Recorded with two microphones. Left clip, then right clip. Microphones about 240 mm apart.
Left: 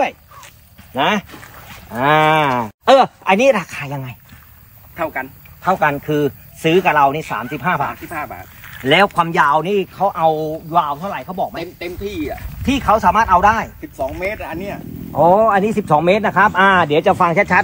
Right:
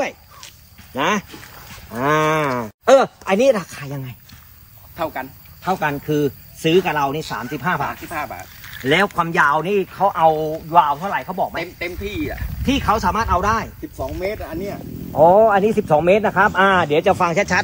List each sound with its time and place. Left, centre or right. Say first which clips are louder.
0.9 s a man's voice: left 3 dB; left
1.9 s cattle: left 5 dB; left
3.3 s speech: left 3 dB; centre
4.9 s speech: left 3 dB; centre
8.7 s speech: left 4 dB; centre
13.1 s speech: left 6 dB; centre
14.2 s cattle: left 2 dB; left
15.1 s a man's voice: even; left